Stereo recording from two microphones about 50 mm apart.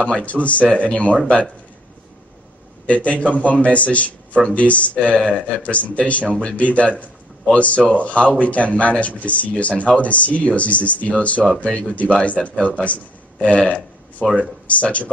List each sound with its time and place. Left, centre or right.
0.0 s speech: left
2.9 s speech: left
14.7 s speech: left